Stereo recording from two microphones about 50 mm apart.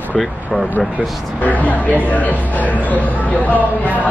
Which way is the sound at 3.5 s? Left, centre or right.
Right.